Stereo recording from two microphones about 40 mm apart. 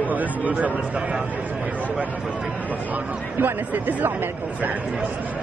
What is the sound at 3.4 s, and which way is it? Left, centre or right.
Speech, right.